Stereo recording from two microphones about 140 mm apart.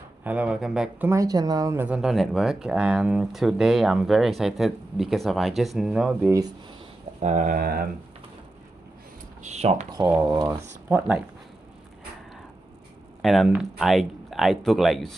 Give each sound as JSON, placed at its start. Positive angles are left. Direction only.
{"t": 0.2, "sound": "speech", "side_deg": -10}
{"t": 1.0, "sound": "speech", "side_deg": -25}
{"t": 1.8, "sound": "speech", "side_deg": -5}
{"t": 7.2, "sound": "speech", "side_deg": -60}
{"t": 9.4, "sound": "speech", "side_deg": -55}
{"t": 9.8, "sound": "speech", "side_deg": -30}
{"t": 10.5, "sound": "speech", "side_deg": -10}
{"t": 13.2, "sound": "speech", "side_deg": 0}